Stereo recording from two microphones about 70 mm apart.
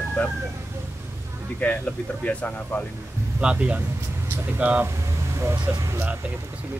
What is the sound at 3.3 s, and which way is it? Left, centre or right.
Speech, centre.